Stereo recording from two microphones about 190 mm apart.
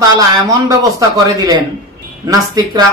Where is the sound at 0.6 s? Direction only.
20° right (ahead or behind).